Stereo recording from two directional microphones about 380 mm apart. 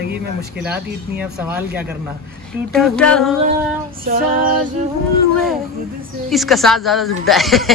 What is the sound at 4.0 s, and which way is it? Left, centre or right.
Female singing, right.